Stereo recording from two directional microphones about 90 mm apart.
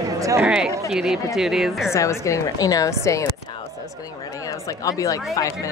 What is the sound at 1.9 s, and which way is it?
A woman's voice, 35° left (ahead or behind).